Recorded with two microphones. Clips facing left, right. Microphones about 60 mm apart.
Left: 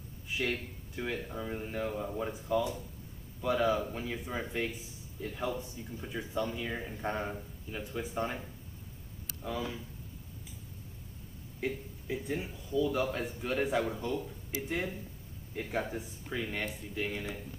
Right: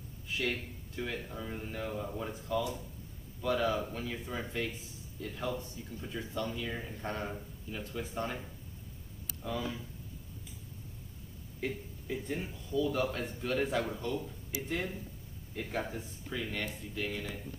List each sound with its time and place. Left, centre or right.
0.3 s a man's voice: centre
9.4 s a man's voice: centre
11.6 s a man's voice: centre